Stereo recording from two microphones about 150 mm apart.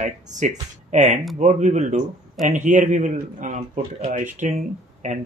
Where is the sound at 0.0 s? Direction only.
55° right (ahead or behind).